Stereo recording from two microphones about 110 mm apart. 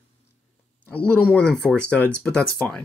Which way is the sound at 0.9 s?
15° left (ahead or behind).